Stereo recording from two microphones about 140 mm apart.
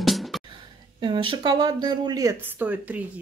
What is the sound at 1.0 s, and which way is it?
Speech, 35° right (ahead or behind).